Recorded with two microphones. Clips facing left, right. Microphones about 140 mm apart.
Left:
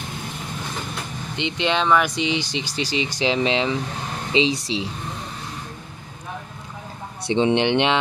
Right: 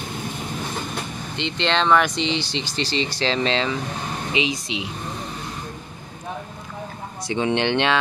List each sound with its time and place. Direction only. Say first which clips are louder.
1.3 s speech: even; 10° left (ahead or behind)
4.3 s speech: left 5 dB; 30° left (ahead or behind)
7.2 s speech: left 3 dB; 20° left (ahead or behind)